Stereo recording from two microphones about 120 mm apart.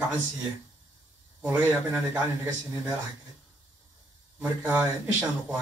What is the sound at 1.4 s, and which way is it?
Speech, 10° right (ahead or behind).